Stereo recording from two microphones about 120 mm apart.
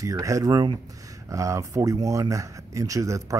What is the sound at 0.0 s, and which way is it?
Speech, 25° right (ahead or behind).